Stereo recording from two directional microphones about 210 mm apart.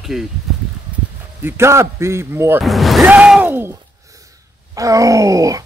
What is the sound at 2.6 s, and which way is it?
Speech, centre (ahead or behind).